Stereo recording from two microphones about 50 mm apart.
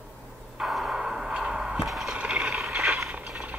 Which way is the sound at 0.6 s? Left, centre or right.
Centre.